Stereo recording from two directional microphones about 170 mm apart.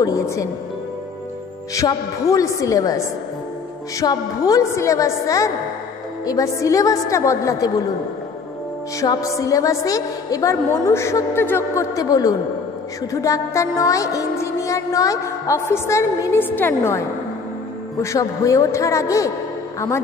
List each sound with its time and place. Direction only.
0.0 s a woman's voice: 20° left (ahead or behind)
1.8 s a woman's voice: 20° left (ahead or behind)
9.0 s a woman's voice: 20° left (ahead or behind)
13.1 s music: 20° left (ahead or behind)
18.0 s music: 20° left (ahead or behind)